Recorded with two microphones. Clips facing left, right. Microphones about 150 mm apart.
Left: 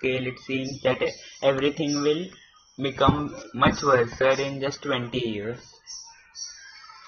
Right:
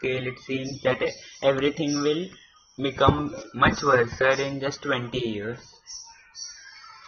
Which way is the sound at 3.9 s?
15° left (ahead or behind).